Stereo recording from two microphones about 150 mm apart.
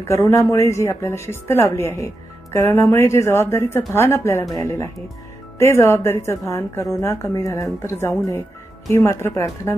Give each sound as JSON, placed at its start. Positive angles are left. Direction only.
{"t": 0.1, "sound": "a woman's voice", "side_deg": 20}